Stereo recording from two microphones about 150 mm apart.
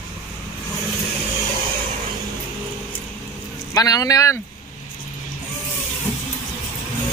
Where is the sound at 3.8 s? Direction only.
25° left (ahead or behind).